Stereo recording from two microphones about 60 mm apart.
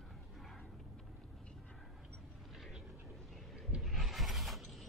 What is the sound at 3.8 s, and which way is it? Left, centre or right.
Mechanisms, centre.